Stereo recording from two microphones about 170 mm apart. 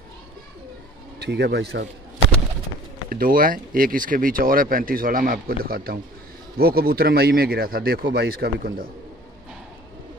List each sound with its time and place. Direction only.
1.2 s speech: 75° right (ahead or behind)
3.1 s speech: 55° right (ahead or behind)